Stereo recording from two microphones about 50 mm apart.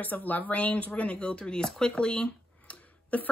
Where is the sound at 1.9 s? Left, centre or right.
Left.